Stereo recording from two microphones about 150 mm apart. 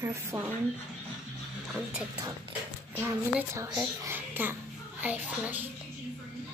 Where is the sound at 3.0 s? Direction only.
10° right (ahead or behind).